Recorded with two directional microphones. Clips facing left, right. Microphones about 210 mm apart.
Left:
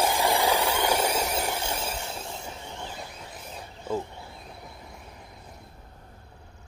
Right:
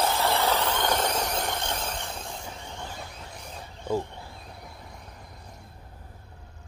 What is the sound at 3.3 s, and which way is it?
Wild animals, 5° left (ahead or behind).